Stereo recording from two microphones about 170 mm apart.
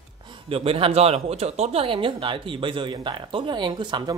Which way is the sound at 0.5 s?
35° right (ahead or behind).